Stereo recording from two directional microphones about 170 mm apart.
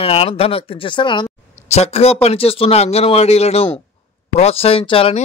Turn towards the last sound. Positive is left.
turn(degrees=30)  # may be behind; listen again after turning